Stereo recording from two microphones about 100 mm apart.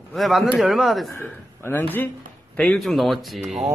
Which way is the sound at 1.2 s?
20° left (ahead or behind).